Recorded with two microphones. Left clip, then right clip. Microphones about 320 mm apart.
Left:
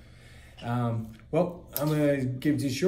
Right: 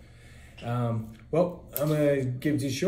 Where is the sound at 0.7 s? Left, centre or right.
Centre.